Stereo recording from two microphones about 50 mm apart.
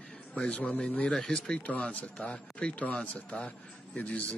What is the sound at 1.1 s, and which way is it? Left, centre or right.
Speech, centre.